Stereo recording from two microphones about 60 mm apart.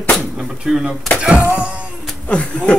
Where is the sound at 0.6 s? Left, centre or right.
Centre.